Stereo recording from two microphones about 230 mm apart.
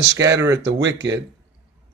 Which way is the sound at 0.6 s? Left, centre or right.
Right.